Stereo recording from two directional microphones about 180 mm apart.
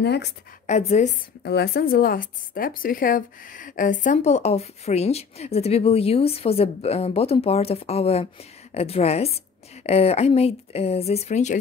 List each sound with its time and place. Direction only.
0.0 s speech: 65° left (ahead or behind)
0.7 s a woman's voice: 40° left (ahead or behind)
1.4 s a woman's voice: 60° left (ahead or behind); by 11.5 s 40° left (ahead or behind)